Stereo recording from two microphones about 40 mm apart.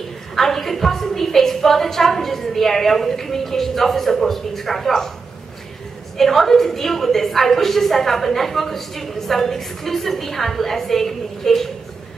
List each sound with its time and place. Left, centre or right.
0.4 s a woman's voice: centre
6.1 s a woman's voice: centre